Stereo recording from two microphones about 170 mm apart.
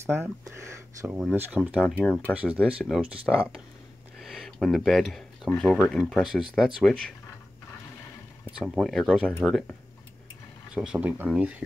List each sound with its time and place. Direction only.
0.0 s speech: 15° right (ahead or behind)
2.0 s speech: 10° left (ahead or behind)
2.3 s speech: 10° right (ahead or behind)
4.2 s a sound: centre (ahead or behind)
5.6 s speech: centre (ahead or behind)
8.5 s speech: 5° right (ahead or behind)